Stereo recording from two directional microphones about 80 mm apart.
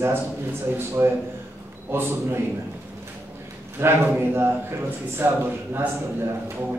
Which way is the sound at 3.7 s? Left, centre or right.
Right.